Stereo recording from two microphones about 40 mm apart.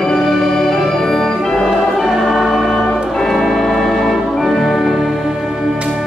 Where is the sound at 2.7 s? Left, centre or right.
Centre.